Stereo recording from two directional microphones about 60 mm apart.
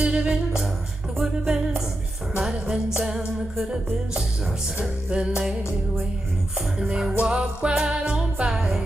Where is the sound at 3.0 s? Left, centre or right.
Centre.